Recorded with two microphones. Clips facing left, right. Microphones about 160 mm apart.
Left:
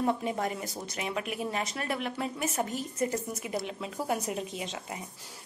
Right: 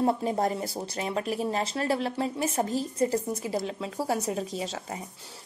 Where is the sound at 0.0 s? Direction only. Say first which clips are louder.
Right 4 dB; 35° right (ahead or behind).